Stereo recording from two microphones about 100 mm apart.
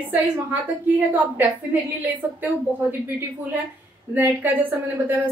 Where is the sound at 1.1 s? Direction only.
20° right (ahead or behind).